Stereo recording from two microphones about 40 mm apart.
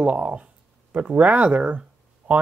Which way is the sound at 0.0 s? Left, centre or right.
Right.